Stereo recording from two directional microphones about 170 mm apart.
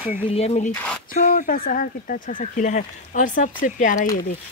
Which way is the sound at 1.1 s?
55° left (ahead or behind).